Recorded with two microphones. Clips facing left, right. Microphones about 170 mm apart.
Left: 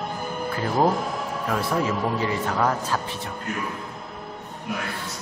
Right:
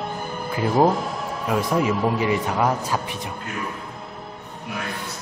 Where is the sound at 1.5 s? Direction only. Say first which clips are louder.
Right 4 dB; 15° right (ahead or behind).